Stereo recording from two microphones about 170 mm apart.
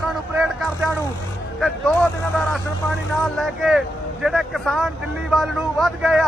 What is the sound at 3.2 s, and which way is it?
Speech, centre (ahead or behind).